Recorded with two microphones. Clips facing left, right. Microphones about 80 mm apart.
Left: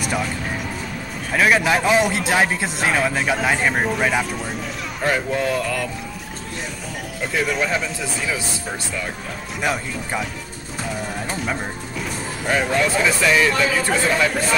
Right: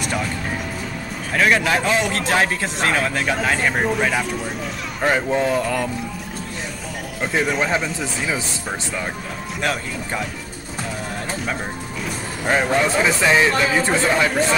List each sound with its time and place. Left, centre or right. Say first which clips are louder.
1.3 s a man's voice: left 1 dB; centre
5.0 s speech: right 2 dB; right
7.3 s speech: right 1 dB; centre
9.6 s a man's voice: left 1 dB; centre
12.4 s speech: right 1 dB; right